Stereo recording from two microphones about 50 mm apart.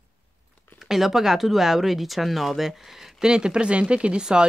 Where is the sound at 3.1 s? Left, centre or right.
Centre.